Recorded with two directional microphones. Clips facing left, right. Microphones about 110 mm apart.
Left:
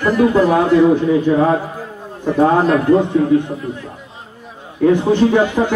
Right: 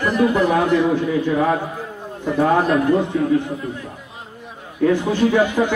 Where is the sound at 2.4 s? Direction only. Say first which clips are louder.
Left 4 dB; 30° left (ahead or behind).